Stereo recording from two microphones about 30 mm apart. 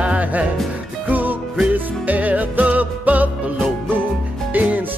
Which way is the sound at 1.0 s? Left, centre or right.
Right.